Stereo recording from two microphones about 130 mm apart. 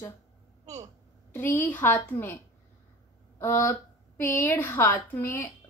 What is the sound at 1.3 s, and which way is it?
A woman's voice, 15° left (ahead or behind).